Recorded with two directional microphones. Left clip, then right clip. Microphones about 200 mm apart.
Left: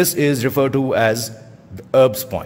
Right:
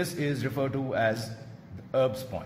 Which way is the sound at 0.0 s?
50° left (ahead or behind).